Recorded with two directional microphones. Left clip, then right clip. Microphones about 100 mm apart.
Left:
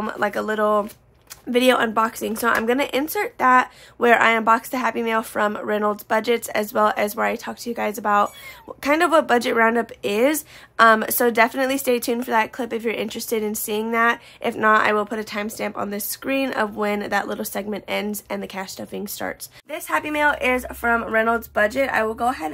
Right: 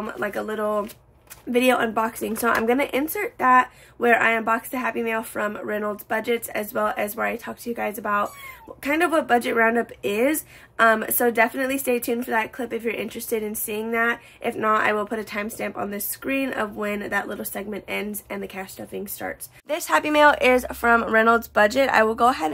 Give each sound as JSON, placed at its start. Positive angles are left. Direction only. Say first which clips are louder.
{"t": 0.0, "sound": "speech", "louder": "left 4 dB", "side_deg": 30}
{"t": 3.3, "sound": "speech", "louder": "left 1 dB", "side_deg": 30}
{"t": 7.2, "sound": "speech", "louder": "left 3 dB", "side_deg": 25}
{"t": 19.7, "sound": "speech", "louder": "right 3 dB", "side_deg": -30}
{"t": 21.5, "sound": "speech", "louder": "right 1 dB", "side_deg": -35}